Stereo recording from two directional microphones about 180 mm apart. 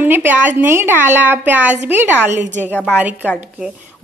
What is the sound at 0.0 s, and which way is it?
A woman's voice, 10° right (ahead or behind).